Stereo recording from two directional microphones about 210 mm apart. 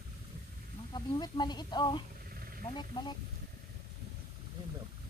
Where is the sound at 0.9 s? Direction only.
20° left (ahead or behind).